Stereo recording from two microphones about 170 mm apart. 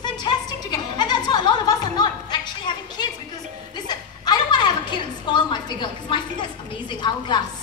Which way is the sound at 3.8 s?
25° left (ahead or behind).